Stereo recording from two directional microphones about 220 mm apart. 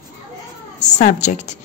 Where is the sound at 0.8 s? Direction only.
30° left (ahead or behind).